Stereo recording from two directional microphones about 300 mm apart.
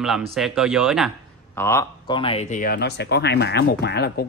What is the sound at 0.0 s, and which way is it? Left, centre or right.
A man's voice, centre.